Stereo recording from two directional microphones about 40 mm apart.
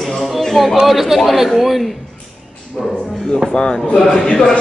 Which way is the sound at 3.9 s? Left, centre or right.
Centre.